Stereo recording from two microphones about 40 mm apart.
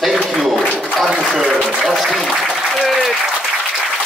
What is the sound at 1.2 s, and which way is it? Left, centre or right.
Speech, centre.